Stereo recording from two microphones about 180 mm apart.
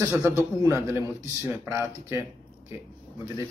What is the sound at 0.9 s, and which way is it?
Speech, 15° right (ahead or behind).